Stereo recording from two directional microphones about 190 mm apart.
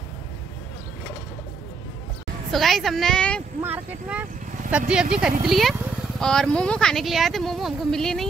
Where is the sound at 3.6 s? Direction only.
10° right (ahead or behind).